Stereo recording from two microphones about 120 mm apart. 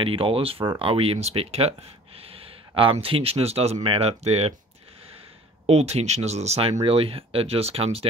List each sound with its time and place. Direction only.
0.0 s speech: 50° right (ahead or behind)
5.7 s speech: 60° right (ahead or behind)
6.8 s speech: 50° right (ahead or behind)